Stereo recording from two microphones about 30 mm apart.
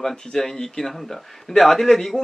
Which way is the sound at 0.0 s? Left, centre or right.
Centre.